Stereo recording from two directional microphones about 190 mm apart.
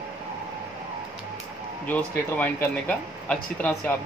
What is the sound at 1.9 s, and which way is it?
Speech, 10° left (ahead or behind).